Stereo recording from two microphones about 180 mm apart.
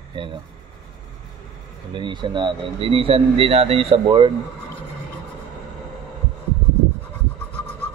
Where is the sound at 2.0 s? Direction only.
25° right (ahead or behind).